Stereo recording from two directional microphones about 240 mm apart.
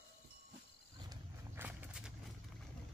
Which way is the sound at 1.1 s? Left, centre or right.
Centre.